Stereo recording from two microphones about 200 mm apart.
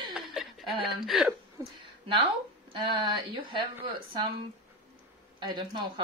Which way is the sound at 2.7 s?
20° right (ahead or behind).